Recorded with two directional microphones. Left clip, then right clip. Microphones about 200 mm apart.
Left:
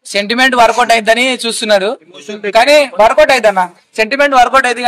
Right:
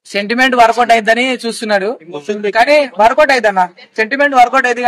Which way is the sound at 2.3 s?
20° left (ahead or behind).